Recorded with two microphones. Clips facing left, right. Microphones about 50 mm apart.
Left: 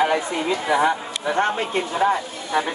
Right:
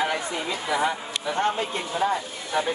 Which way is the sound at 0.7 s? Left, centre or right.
Left.